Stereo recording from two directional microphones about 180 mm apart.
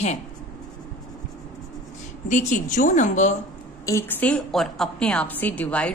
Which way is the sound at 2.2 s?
45° left (ahead or behind).